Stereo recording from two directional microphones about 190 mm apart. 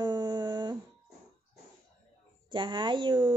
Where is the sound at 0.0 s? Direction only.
20° right (ahead or behind).